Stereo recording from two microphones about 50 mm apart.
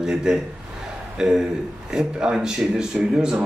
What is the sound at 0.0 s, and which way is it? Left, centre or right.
A man's voice, centre.